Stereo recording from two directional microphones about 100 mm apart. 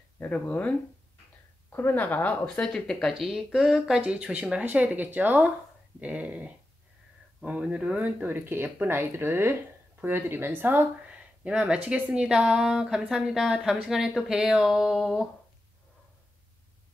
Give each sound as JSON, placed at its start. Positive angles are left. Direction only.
{"t": 0.2, "sound": "speech", "side_deg": 15}